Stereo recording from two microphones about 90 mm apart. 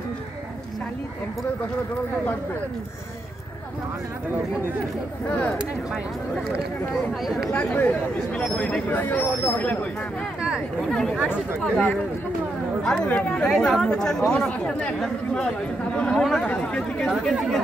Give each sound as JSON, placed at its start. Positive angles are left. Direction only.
{"t": 7.5, "sound": "speech", "side_deg": 20}
{"t": 10.9, "sound": "speech", "side_deg": 5}
{"t": 17.1, "sound": "speech", "side_deg": -5}